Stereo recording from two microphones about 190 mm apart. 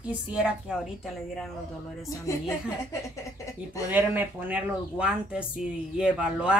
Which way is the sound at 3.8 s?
10° right (ahead or behind).